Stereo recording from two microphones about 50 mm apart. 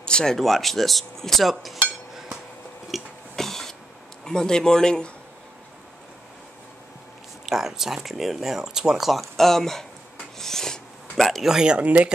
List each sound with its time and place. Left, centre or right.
0.0 s speech: centre
2.9 s a sound: centre
4.2 s speech: centre
7.4 s speech: centre
10.3 s a sound: centre
11.4 s speech: centre